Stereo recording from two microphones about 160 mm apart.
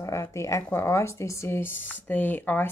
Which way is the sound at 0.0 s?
20° left (ahead or behind).